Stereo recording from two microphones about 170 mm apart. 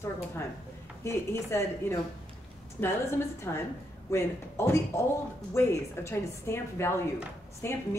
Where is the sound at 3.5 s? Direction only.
15° left (ahead or behind).